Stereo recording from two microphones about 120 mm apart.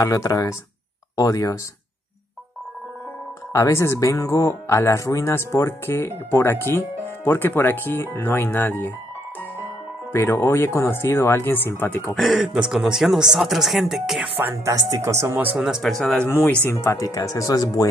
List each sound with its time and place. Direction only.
0.0 s speech: 30° left (ahead or behind)
3.5 s speech: 25° left (ahead or behind)
10.1 s speech: 25° left (ahead or behind)
12.2 s speech: centre (ahead or behind)
14.5 s speech: 30° right (ahead or behind)
15.5 s speech: 5° right (ahead or behind)
16.4 s speech: 20° left (ahead or behind)